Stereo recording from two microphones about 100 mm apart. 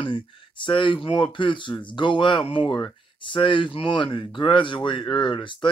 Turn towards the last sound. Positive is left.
turn(degrees=55)  # may be behind; listen again after turning